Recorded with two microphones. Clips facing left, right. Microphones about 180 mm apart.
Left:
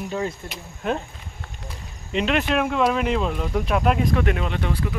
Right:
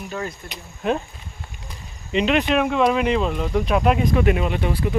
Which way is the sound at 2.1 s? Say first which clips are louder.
Right 3 dB; centre (ahead or behind).